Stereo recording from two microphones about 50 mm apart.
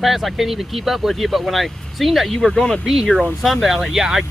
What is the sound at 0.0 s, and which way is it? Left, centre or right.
Speech, centre.